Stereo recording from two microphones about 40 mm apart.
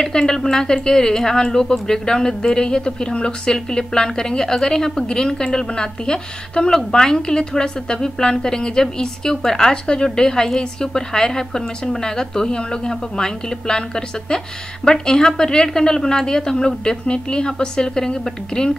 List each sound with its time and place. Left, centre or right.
0.0 s speech: centre